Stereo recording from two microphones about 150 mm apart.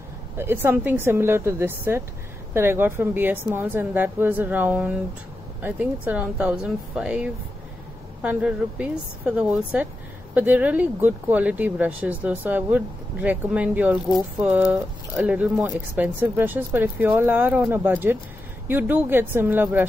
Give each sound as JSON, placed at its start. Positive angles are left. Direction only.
{"t": 0.4, "sound": "speech", "side_deg": -15}